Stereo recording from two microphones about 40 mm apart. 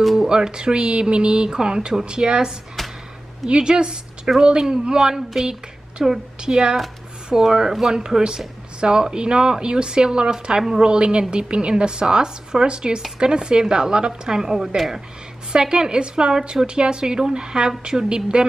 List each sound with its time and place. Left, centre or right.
0.0 s music: centre
0.3 s a woman's voice: right